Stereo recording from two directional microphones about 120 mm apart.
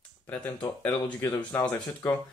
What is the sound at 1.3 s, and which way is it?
Speech, 40° left (ahead or behind).